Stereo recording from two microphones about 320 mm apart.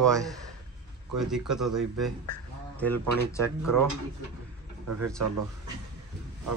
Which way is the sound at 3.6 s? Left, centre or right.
Right.